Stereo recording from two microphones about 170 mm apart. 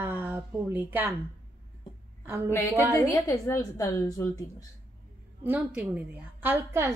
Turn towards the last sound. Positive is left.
turn(degrees=-15)  # may be behind; listen again after turning